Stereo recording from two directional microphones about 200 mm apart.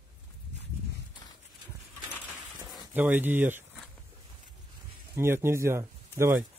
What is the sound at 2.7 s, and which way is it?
Speech, 10° right (ahead or behind).